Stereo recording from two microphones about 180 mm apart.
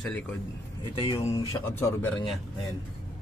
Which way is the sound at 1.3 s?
15° left (ahead or behind).